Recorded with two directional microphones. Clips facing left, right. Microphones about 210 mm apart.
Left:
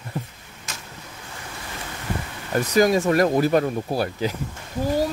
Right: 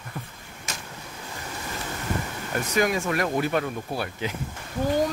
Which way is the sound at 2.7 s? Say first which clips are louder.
Left 7 dB; 35° left (ahead or behind).